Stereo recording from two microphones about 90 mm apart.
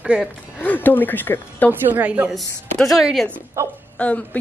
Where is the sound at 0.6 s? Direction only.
20° left (ahead or behind).